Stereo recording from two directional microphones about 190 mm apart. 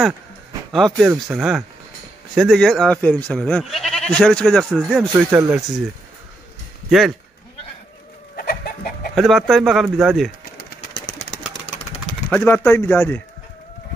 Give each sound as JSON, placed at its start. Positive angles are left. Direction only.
{"t": 0.7, "sound": "speech", "side_deg": 0}
{"t": 6.9, "sound": "speech", "side_deg": 0}
{"t": 8.4, "sound": "chicken", "side_deg": 50}
{"t": 9.1, "sound": "speech", "side_deg": 0}
{"t": 12.3, "sound": "speech", "side_deg": 5}